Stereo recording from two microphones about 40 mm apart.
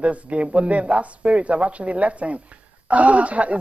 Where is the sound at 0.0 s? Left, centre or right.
Right.